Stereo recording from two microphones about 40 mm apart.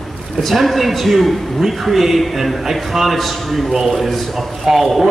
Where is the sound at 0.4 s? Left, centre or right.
Centre.